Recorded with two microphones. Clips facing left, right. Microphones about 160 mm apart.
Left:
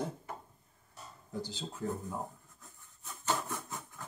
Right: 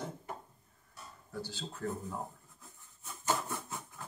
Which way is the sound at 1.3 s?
15° left (ahead or behind).